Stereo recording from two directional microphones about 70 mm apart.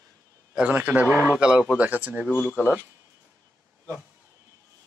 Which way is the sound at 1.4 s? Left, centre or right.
Centre.